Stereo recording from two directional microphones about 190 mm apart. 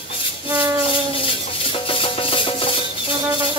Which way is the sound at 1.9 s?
30° left (ahead or behind).